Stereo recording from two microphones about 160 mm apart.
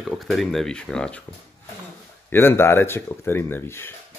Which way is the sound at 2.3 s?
15° left (ahead or behind).